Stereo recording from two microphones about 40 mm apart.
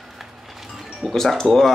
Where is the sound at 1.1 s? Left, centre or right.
Centre.